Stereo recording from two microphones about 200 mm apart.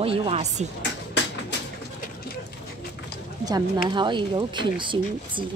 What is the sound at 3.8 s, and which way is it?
Speech, 25° right (ahead or behind).